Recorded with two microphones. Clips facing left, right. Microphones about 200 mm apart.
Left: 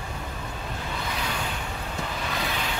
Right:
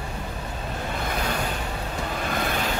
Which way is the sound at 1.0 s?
45° right (ahead or behind).